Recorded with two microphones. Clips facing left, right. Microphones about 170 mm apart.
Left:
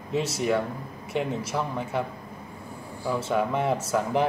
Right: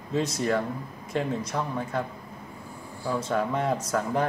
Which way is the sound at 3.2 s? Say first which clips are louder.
Left 2 dB; 5° left (ahead or behind).